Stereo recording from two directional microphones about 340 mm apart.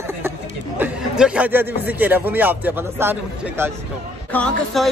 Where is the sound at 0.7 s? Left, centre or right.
Centre.